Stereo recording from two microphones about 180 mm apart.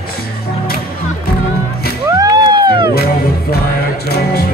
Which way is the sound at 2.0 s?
20° right (ahead or behind).